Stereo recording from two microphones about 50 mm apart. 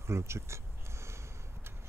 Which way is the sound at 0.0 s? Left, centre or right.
Right.